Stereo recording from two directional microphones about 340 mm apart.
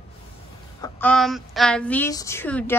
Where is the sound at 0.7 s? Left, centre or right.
Centre.